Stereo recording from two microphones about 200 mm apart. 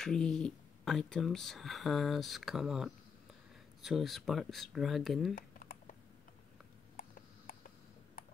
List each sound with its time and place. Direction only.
0.0 s speech: 5° left (ahead or behind)
5.3 s typing: 45° left (ahead or behind)
7.0 s a sound: 45° left (ahead or behind)